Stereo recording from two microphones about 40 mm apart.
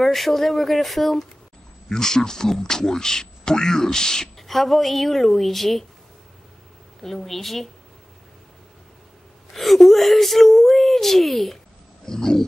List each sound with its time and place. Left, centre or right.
0.0 s speech: centre
1.9 s speech: centre
4.4 s speech: centre
7.0 s speech: centre
9.5 s speech: centre
12.1 s speech: centre